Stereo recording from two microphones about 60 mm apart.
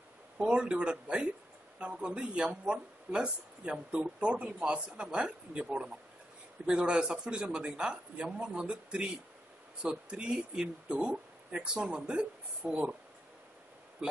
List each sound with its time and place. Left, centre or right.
0.4 s speech: centre